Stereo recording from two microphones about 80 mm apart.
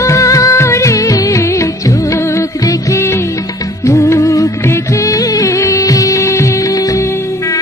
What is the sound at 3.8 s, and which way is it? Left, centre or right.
Music of bollywood, left.